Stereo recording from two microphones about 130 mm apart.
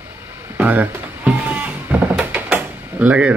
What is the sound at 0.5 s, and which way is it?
Music, 10° right (ahead or behind).